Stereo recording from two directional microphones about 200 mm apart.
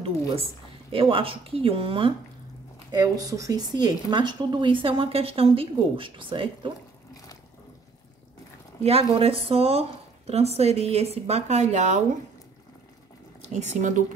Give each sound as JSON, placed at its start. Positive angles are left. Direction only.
{"t": 0.0, "sound": "a woman's voice", "side_deg": -30}
{"t": 8.8, "sound": "speech", "side_deg": -30}
{"t": 13.4, "sound": "a sound", "side_deg": -35}
{"t": 13.7, "sound": "speech", "side_deg": -40}